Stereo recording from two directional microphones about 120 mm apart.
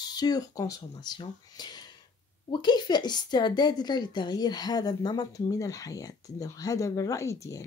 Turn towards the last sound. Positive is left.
turn(degrees=25)  # may be behind; listen again after turning